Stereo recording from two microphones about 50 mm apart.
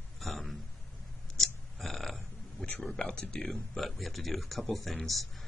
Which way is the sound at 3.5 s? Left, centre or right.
Centre.